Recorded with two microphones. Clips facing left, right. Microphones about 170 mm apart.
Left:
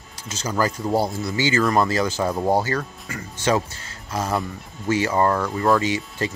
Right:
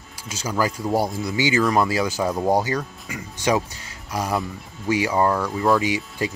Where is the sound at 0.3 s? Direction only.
10° right (ahead or behind).